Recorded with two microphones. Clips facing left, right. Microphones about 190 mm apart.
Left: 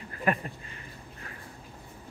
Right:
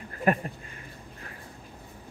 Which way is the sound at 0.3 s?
45° right (ahead or behind).